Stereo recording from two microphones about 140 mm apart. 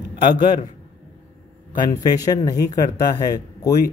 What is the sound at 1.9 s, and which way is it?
Speech, 25° left (ahead or behind).